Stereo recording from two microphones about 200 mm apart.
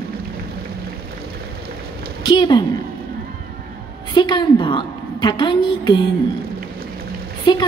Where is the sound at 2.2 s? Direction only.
20° left (ahead or behind).